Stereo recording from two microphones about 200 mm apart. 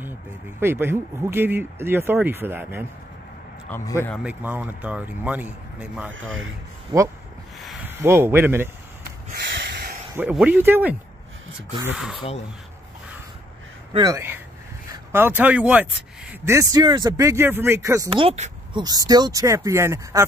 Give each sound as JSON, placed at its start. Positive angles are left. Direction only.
{"t": 0.6, "sound": "speech", "side_deg": -10}
{"t": 3.6, "sound": "a man's voice", "side_deg": 10}
{"t": 4.1, "sound": "speech", "side_deg": -5}
{"t": 6.9, "sound": "speech", "side_deg": -20}
{"t": 7.6, "sound": "speech", "side_deg": -5}
{"t": 9.0, "sound": "snort", "side_deg": -45}
{"t": 9.5, "sound": "snort", "side_deg": -60}
{"t": 10.1, "sound": "speech", "side_deg": -10}
{"t": 13.9, "sound": "speech", "side_deg": -15}
{"t": 18.2, "sound": "speech", "side_deg": -30}
{"t": 18.8, "sound": "speech", "side_deg": -20}